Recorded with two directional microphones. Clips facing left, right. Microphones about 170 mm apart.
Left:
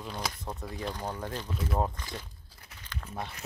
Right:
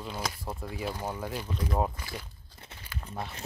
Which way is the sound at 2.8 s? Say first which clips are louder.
Even; 10° right (ahead or behind).